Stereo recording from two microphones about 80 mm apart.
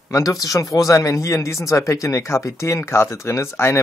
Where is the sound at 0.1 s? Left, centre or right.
Left.